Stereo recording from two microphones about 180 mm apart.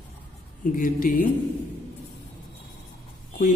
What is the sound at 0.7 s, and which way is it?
Speech, 50° left (ahead or behind).